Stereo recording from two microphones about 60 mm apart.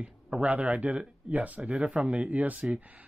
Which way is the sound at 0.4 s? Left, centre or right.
Right.